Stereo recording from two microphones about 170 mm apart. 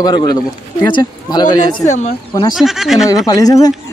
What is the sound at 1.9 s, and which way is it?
Speech, 40° left (ahead or behind).